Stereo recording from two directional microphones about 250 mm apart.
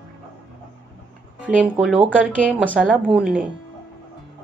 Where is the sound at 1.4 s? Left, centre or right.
Centre.